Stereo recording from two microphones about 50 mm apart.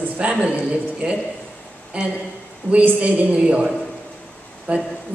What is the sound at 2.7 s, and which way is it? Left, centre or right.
Speech, left.